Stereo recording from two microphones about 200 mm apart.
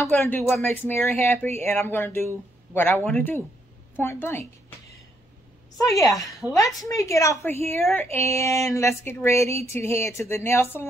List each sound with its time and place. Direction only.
0.0 s speech: 10° left (ahead or behind)
5.8 s speech: 15° left (ahead or behind)